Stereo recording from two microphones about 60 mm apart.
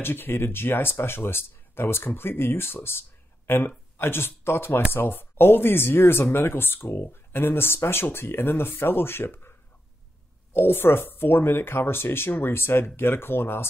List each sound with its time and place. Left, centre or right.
0.0 s speech: left